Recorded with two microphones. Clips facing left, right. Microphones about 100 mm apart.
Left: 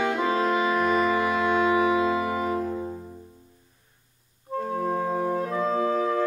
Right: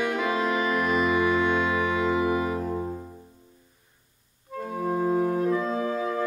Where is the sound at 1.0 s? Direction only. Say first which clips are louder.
Even; 30° left (ahead or behind).